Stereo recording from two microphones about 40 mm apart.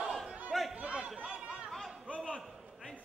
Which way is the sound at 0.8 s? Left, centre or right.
Right.